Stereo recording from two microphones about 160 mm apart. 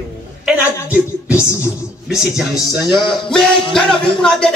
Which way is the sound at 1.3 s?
15° left (ahead or behind).